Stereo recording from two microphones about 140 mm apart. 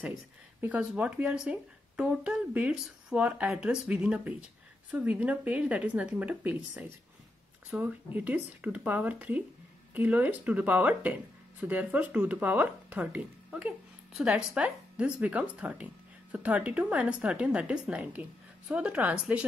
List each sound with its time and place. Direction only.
0.6 s speech: 10° right (ahead or behind)